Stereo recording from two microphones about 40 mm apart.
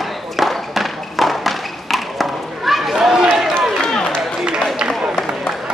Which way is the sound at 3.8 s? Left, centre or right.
Centre.